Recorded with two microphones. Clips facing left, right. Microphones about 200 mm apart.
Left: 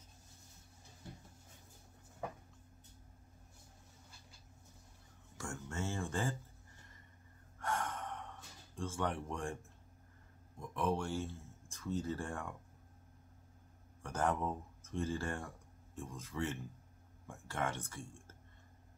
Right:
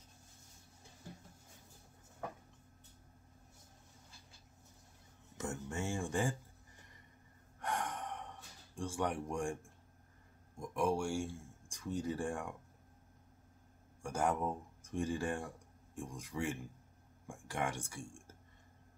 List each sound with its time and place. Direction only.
5.4 s a sound: 15° right (ahead or behind)
7.6 s gasp: 15° right (ahead or behind)
8.7 s speech: 15° right (ahead or behind)
14.0 s speech: 10° right (ahead or behind)